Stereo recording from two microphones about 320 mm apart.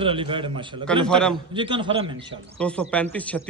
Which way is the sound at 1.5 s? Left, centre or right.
Centre.